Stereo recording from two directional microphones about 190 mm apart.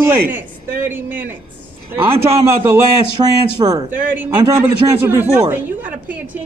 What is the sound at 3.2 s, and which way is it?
Speech, 25° right (ahead or behind).